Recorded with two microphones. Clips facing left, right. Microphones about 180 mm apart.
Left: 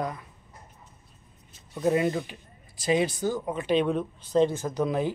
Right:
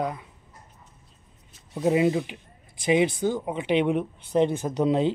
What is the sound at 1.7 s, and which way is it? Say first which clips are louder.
Speech: right 3 dB; 15° right (ahead or behind).